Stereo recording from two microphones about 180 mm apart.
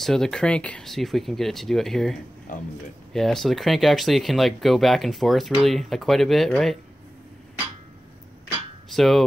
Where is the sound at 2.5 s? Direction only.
50° left (ahead or behind).